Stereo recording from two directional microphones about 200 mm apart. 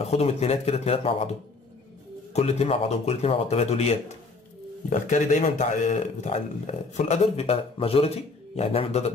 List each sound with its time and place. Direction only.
0.0 s speech: 30° left (ahead or behind)
2.3 s speech: 30° left (ahead or behind)